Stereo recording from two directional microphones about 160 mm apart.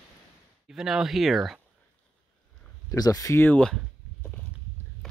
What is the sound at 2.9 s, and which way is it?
Speech, 20° left (ahead or behind).